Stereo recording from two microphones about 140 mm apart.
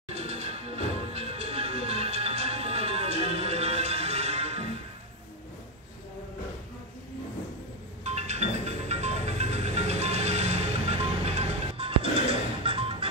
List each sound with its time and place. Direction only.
0.1 s music: 50° right (ahead or behind)
8.0 s music: 50° right (ahead or behind)